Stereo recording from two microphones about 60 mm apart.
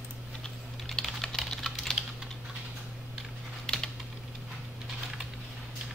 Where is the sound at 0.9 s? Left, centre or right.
Centre.